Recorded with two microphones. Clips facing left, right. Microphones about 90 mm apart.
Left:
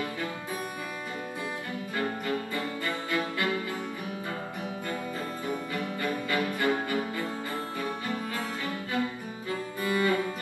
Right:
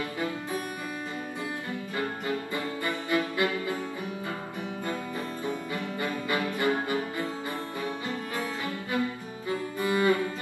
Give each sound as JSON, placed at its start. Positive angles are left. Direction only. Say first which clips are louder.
{"t": 2.0, "sound": "music", "louder": "left 1 dB", "side_deg": -20}
{"t": 5.9, "sound": "music", "louder": "even", "side_deg": -20}
{"t": 9.5, "sound": "music", "louder": "right 2 dB", "side_deg": -20}